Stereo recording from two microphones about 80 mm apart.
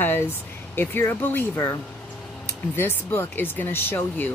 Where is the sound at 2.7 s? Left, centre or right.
Left.